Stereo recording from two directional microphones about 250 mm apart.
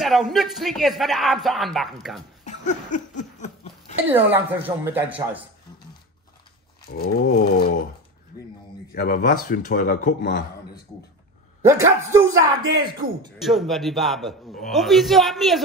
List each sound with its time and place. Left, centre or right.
0.0 s speech: centre
2.4 s a sound: left
4.1 s a woman's voice: centre
6.9 s speech: left
8.9 s speech: left
11.6 s a woman's voice: centre
13.4 s speech: centre